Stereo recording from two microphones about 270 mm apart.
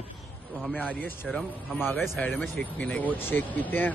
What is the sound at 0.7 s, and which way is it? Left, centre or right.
Speech, centre.